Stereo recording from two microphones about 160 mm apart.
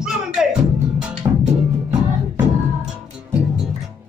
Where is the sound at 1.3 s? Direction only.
25° right (ahead or behind).